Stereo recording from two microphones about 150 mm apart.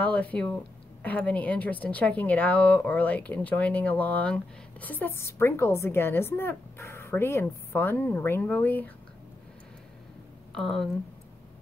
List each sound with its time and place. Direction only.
0.0 s a woman's voice: 10° left (ahead or behind)
10.5 s speech: 5° left (ahead or behind)